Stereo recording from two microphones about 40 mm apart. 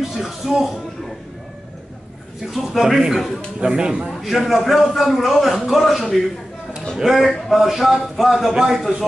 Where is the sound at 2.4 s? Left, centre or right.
Centre.